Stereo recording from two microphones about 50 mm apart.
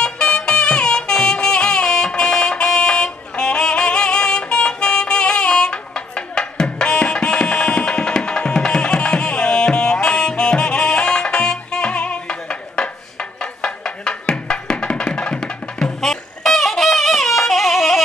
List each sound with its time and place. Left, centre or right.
0.0 s music: centre
16.0 s a sound: centre
17.5 s music: centre